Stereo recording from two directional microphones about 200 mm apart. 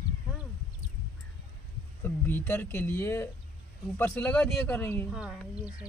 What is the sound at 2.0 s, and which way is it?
Speech, 10° left (ahead or behind).